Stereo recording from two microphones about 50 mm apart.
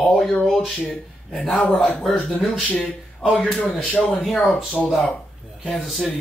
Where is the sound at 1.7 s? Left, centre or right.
Left.